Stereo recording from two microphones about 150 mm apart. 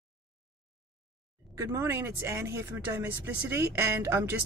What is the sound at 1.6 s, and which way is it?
Speech, 20° right (ahead or behind).